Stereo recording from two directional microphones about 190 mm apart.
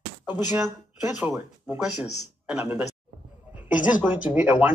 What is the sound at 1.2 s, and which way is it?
Speech, 10° right (ahead or behind).